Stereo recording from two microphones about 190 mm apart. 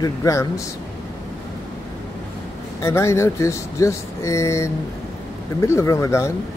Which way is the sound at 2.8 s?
15° left (ahead or behind).